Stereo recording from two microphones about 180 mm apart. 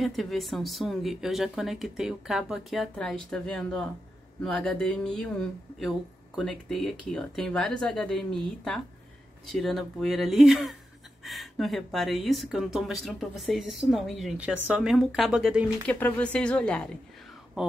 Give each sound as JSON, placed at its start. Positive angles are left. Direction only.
{"t": 0.0, "sound": "a woman's voice", "side_deg": 0}